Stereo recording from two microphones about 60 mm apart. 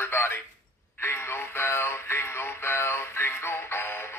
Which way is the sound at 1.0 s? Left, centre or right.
Left.